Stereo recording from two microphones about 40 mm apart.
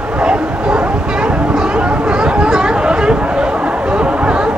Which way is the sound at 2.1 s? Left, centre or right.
Right.